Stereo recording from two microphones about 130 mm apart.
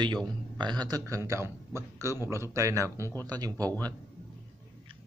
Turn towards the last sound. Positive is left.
turn(degrees=10)  # may be behind; listen again after turning